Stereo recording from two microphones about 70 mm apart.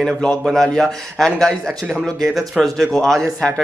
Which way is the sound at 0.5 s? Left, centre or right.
Centre.